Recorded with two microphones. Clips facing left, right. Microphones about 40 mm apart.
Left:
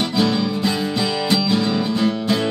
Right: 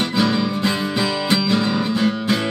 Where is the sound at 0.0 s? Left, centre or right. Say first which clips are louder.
Even; centre.